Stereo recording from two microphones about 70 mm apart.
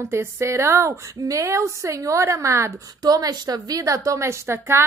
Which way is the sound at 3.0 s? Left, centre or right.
Right.